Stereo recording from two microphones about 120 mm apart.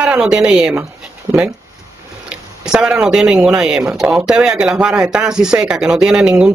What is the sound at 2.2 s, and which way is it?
Speech, 5° right (ahead or behind).